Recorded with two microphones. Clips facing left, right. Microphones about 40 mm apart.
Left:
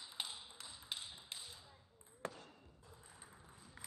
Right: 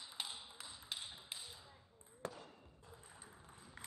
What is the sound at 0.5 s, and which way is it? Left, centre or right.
Tap, centre.